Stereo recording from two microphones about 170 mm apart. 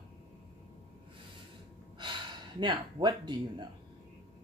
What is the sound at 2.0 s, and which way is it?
Speech, 30° right (ahead or behind).